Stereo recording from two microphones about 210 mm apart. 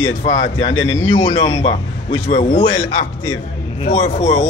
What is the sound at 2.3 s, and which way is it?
Speech, 35° left (ahead or behind).